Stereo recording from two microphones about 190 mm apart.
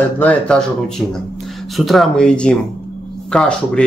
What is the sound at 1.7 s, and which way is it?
A man's voice, centre (ahead or behind).